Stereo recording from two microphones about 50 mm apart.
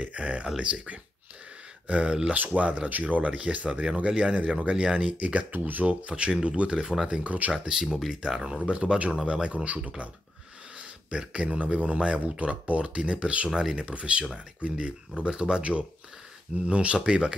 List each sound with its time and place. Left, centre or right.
0.0 s speech: right
7.2 s speech: right
7.5 s speech: centre
8.5 s speech: right
11.1 s speech: right